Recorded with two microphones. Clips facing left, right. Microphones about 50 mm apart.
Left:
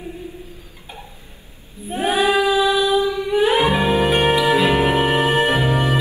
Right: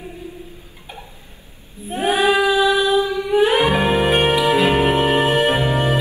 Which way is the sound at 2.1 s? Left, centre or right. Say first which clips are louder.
Right 1 dB; right.